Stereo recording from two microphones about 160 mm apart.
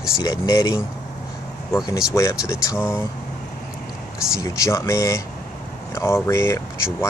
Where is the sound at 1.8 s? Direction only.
20° left (ahead or behind).